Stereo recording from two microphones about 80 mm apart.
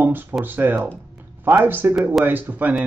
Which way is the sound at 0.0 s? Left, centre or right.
Right.